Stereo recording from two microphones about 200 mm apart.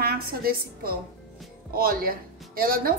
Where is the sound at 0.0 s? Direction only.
50° right (ahead or behind).